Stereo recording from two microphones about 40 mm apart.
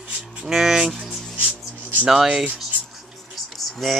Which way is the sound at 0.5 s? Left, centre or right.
Centre.